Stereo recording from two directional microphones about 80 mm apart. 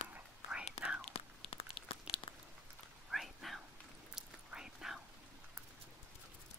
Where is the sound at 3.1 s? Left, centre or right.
Centre.